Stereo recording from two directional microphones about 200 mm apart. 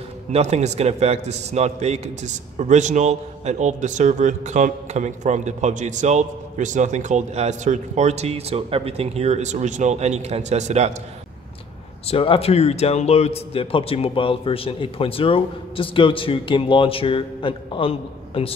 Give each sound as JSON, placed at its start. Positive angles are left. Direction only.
{"t": 0.3, "sound": "a man's voice", "side_deg": -35}
{"t": 12.1, "sound": "speech", "side_deg": 30}